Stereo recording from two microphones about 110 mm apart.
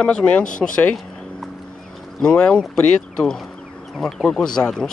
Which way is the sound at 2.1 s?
5° left (ahead or behind).